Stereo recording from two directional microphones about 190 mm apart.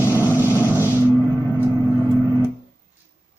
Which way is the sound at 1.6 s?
10° right (ahead or behind).